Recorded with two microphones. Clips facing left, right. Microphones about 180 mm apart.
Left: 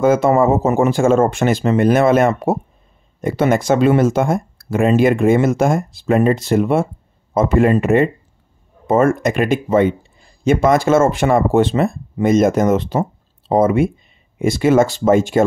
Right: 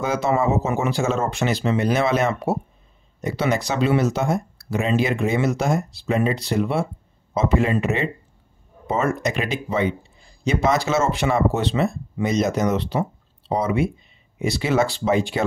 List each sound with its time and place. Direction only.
0.0 s speech: 50° left (ahead or behind)